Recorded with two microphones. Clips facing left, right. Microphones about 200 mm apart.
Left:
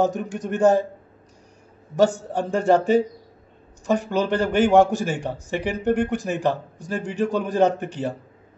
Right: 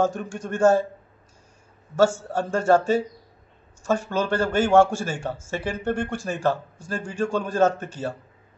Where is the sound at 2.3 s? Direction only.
15° left (ahead or behind).